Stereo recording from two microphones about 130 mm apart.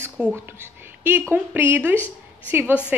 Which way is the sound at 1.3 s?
15° right (ahead or behind).